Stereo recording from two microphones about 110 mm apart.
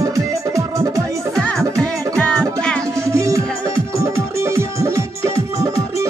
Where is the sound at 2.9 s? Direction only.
25° right (ahead or behind).